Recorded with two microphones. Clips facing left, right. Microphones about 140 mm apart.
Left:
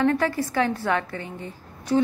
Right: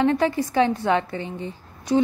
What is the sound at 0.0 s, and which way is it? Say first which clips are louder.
A woman's voice: right 2 dB; 20° right (ahead or behind).